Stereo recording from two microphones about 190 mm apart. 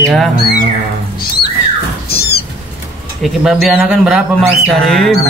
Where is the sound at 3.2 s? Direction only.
Centre (ahead or behind).